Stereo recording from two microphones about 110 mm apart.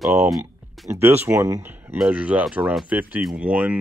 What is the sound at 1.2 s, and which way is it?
Speech, 25° right (ahead or behind).